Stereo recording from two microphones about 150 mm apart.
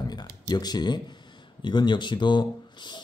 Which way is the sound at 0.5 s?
30° left (ahead or behind).